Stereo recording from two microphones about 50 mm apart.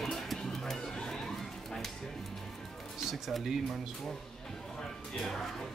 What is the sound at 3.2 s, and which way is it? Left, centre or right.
Speech, centre.